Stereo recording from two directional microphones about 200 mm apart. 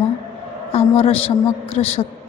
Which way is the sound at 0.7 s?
30° left (ahead or behind).